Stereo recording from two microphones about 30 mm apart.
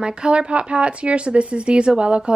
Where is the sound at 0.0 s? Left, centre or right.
Right.